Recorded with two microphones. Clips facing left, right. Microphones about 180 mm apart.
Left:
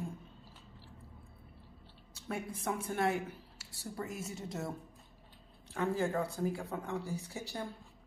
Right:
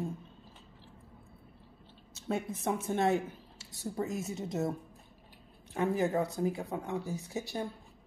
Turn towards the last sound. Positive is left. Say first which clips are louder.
# right 4 dB
turn(degrees=-20)  # may be behind; listen again after turning